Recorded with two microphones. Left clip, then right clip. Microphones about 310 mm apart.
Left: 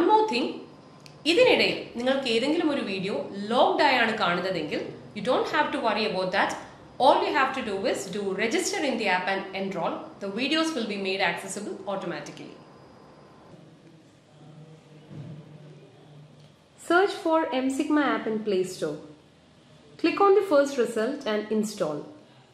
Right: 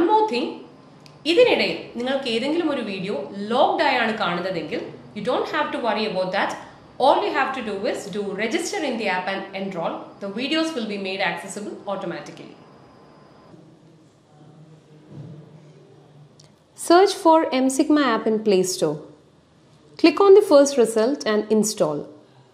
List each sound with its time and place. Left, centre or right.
0.1 s a sound: centre
1.2 s a woman's voice: centre
16.8 s a woman's voice: right
20.0 s a woman's voice: right